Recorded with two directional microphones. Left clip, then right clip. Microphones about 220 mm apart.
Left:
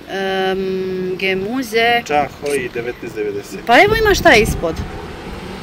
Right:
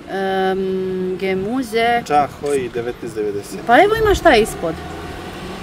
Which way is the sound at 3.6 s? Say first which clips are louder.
Left 1 dB; centre (ahead or behind).